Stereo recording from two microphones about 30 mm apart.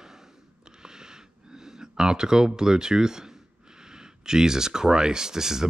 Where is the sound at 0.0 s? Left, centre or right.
Centre.